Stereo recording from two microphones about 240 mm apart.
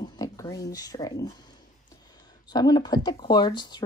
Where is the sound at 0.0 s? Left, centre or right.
Centre.